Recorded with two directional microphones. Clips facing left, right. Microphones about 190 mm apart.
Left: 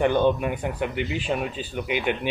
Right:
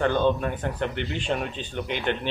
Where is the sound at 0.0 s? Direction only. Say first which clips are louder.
Left 2 dB; 15° left (ahead or behind).